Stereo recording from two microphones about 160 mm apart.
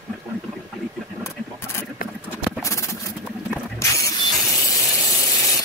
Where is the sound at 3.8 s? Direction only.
20° left (ahead or behind).